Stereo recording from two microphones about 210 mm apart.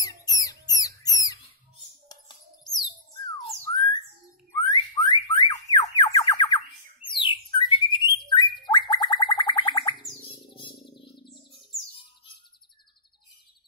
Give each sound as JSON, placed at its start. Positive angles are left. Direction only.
{"t": 0.0, "sound": "music", "side_deg": 15}
{"t": 2.0, "sound": "bird", "side_deg": 20}
{"t": 4.5, "sound": "a sound", "side_deg": 20}
{"t": 7.1, "sound": "bird", "side_deg": 25}